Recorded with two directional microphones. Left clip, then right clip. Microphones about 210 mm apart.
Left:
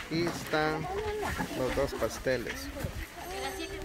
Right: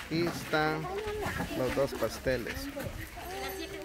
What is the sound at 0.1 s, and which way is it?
Speech, 15° right (ahead or behind).